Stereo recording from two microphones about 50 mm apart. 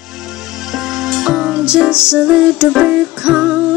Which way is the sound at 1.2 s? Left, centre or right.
Centre.